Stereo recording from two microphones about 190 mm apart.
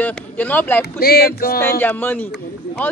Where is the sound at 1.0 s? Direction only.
55° left (ahead or behind).